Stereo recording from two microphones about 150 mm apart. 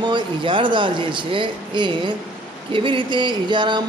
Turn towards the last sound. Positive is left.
turn(degrees=-30)  # may be behind; listen again after turning